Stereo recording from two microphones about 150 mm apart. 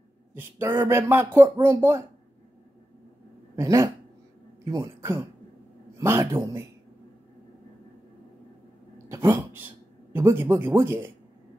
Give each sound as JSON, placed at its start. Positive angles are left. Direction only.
{"t": 0.3, "sound": "speech", "side_deg": -15}
{"t": 3.5, "sound": "speech", "side_deg": -20}
{"t": 8.9, "sound": "a sound", "side_deg": -20}
{"t": 10.1, "sound": "speech", "side_deg": -15}